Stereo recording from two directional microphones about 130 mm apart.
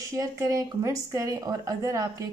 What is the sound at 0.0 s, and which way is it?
Speech, 25° right (ahead or behind).